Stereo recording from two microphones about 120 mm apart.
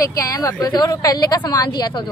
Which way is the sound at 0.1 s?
30° left (ahead or behind).